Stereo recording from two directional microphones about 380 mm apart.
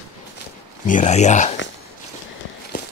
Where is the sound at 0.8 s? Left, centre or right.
Centre.